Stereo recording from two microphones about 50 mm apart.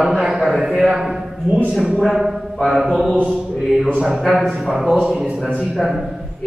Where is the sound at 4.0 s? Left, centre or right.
Centre.